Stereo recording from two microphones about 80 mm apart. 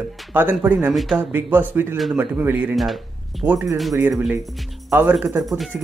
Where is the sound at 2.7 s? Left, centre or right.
Centre.